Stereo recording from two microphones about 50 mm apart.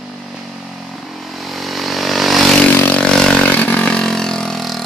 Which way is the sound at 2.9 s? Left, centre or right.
Centre.